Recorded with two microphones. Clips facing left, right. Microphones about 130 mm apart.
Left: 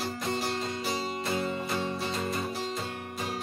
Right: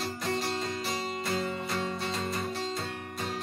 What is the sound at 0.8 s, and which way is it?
Music, centre (ahead or behind).